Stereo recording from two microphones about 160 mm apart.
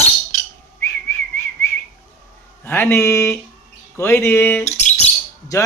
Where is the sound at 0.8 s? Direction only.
15° left (ahead or behind).